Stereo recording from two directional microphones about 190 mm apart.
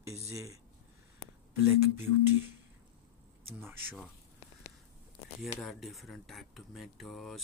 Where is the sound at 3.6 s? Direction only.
10° right (ahead or behind).